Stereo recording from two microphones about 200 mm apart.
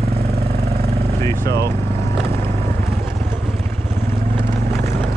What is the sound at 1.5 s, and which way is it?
Speech, 55° right (ahead or behind).